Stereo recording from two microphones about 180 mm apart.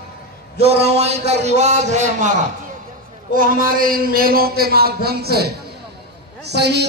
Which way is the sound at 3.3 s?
50° right (ahead or behind).